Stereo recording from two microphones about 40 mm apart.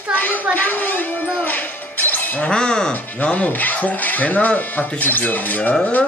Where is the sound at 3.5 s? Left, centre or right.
Left.